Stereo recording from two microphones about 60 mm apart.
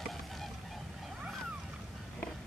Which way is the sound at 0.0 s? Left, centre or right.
Centre.